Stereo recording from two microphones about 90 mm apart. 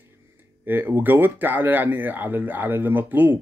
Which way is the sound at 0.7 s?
20° right (ahead or behind).